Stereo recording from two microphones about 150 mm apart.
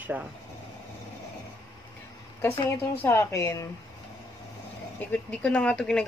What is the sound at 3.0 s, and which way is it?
Speech, 15° left (ahead or behind).